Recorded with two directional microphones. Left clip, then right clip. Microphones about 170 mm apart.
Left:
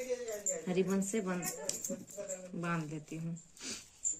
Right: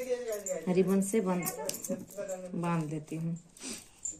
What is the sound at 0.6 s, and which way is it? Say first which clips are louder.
Speech: right 6 dB; 15° left (ahead or behind).